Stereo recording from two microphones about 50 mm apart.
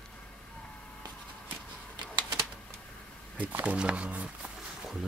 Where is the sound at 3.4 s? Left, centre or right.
Right.